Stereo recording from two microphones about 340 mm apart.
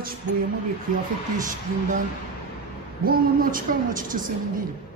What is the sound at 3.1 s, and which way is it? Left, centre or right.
Speech, right.